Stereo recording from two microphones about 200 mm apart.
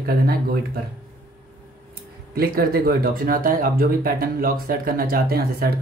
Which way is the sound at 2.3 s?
50° right (ahead or behind).